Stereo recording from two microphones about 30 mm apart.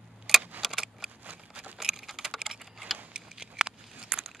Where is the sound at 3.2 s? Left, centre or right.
Right.